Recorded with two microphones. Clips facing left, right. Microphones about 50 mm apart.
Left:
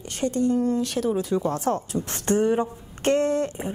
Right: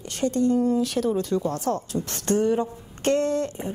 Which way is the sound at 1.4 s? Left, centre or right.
Centre.